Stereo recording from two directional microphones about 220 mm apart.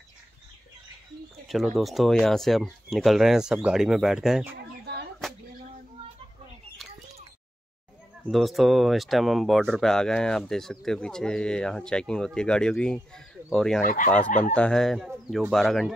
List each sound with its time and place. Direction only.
1.8 s speech: centre (ahead or behind)
5.2 s a sound: centre (ahead or behind)
8.2 s speech: centre (ahead or behind)
13.8 s speech: 35° left (ahead or behind)
14.5 s speech: 5° left (ahead or behind)